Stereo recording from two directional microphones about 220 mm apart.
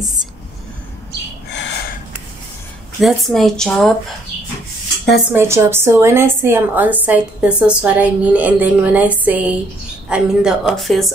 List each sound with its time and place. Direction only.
1.5 s a sound: 55° left (ahead or behind)
3.0 s a woman's voice: centre (ahead or behind)
5.3 s a woman's voice: 10° right (ahead or behind)